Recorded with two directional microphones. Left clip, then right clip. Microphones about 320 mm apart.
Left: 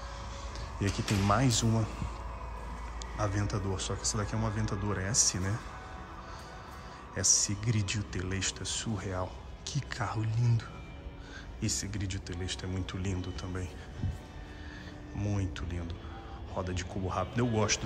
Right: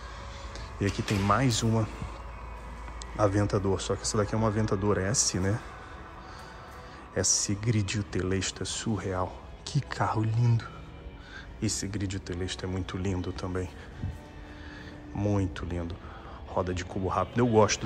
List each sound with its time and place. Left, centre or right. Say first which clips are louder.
0.8 s speech: right 3 dB; centre
3.2 s speech: right 9 dB; centre
7.2 s speech: right 1 dB; centre
15.1 s speech: right 8 dB; centre